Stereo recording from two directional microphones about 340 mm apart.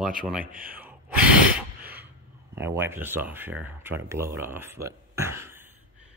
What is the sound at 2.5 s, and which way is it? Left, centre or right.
Speech, centre.